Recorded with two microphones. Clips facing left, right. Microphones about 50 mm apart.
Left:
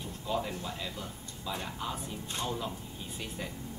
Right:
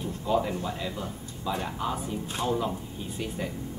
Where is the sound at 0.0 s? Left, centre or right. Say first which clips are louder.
Right 7 dB; centre.